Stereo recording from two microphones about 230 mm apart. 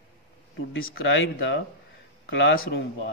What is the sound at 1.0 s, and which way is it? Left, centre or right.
Speech, left.